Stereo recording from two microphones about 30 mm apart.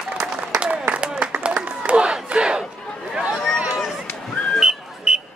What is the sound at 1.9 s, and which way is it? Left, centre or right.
Battle cry, right.